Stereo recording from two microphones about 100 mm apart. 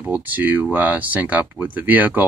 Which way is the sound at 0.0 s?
15° right (ahead or behind).